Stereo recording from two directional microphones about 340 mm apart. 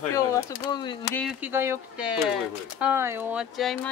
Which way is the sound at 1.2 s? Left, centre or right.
Centre.